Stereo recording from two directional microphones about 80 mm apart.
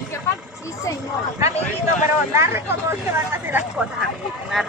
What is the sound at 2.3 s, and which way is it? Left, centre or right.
Speech, right.